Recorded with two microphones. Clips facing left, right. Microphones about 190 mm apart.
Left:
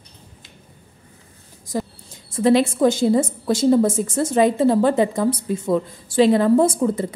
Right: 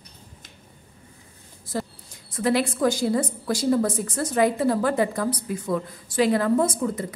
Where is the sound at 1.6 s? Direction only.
15° left (ahead or behind).